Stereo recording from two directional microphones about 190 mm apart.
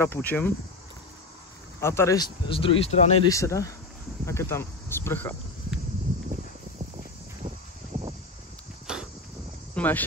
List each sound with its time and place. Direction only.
0.0 s speech: 10° left (ahead or behind)
1.8 s speech: 15° left (ahead or behind); by 3.3 s 35° left (ahead or behind)
3.3 s speech: 15° left (ahead or behind)
8.9 s a sound: 5° right (ahead or behind)
9.8 s speech: 10° left (ahead or behind)